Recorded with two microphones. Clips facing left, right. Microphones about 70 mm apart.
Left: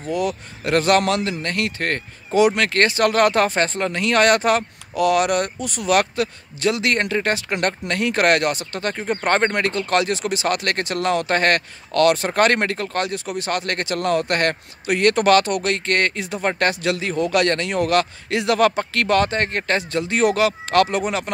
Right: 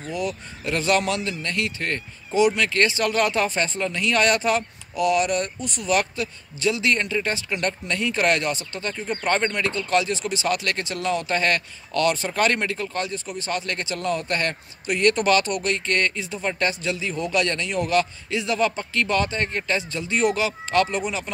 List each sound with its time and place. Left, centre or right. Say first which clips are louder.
0.1 s speech: left 5 dB; left